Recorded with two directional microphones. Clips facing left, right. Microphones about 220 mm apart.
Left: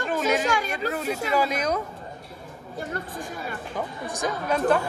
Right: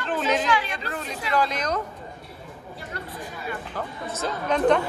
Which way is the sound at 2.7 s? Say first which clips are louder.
Left 5 dB; 45° left (ahead or behind).